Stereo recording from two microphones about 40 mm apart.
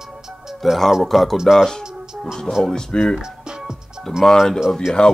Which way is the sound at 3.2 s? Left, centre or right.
Centre.